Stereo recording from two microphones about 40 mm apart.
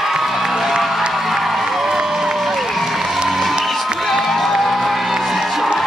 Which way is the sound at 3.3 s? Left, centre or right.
Centre.